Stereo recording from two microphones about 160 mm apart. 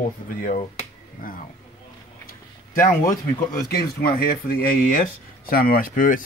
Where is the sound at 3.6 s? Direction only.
75° left (ahead or behind); by 6.2 s 60° left (ahead or behind).